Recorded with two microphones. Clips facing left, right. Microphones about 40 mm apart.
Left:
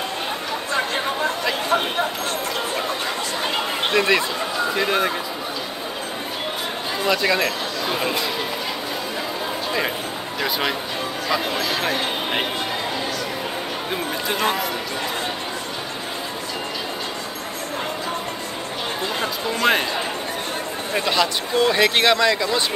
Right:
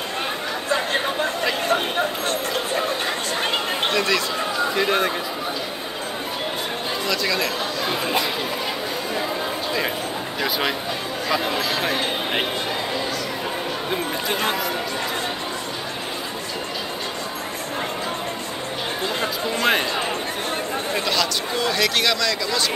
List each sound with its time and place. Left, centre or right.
3.9 s speech: left
4.7 s speech: centre
7.1 s speech: left
11.2 s speech: centre
13.8 s speech: centre
19.7 s speech: centre
20.9 s speech: left